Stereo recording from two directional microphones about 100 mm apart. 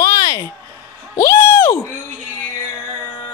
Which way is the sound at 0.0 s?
35° left (ahead or behind).